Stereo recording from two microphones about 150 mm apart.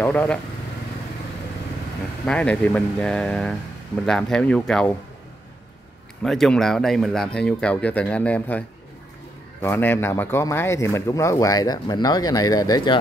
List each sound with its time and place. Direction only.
0.0 s speech: 10° left (ahead or behind)
2.2 s speech: 5° left (ahead or behind)
6.2 s speech: centre (ahead or behind); by 13.0 s 30° left (ahead or behind)